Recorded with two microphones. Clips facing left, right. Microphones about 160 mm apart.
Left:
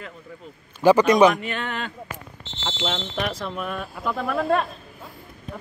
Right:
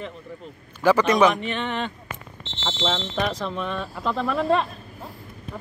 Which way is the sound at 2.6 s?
10° left (ahead or behind).